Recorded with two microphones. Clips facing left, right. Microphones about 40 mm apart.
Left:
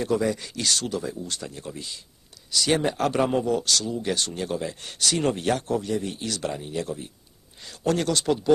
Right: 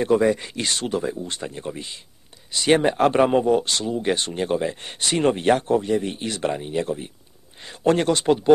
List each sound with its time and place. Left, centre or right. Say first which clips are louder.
0.0 s speech: right 6 dB; right